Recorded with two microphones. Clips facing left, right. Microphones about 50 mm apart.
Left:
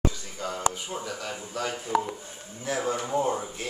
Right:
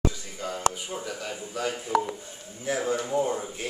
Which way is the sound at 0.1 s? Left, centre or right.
Centre.